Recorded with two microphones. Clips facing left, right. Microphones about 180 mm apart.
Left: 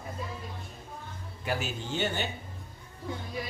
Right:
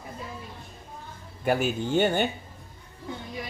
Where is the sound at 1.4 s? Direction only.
55° right (ahead or behind).